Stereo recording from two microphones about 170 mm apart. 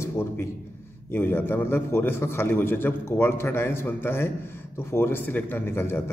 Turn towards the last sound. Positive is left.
turn(degrees=15)  # may be behind; listen again after turning